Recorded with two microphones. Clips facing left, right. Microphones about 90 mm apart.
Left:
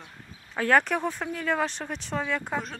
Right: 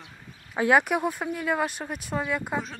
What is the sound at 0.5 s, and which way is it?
Speech, 10° right (ahead or behind).